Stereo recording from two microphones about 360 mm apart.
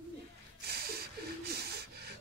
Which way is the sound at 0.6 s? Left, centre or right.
Right.